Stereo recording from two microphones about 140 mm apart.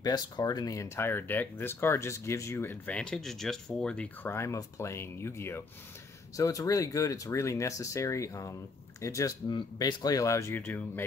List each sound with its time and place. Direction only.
0.0 s speech: 25° left (ahead or behind)